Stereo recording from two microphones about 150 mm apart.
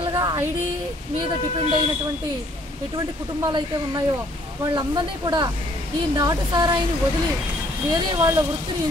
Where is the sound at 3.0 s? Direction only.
25° right (ahead or behind).